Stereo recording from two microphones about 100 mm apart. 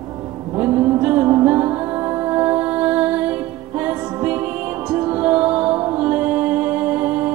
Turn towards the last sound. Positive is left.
turn(degrees=-15)  # may be behind; listen again after turning